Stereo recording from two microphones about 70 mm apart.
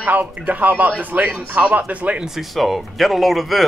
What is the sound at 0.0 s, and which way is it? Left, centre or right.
Speech, right.